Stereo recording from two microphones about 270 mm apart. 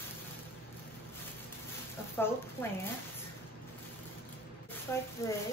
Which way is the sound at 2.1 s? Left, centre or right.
Centre.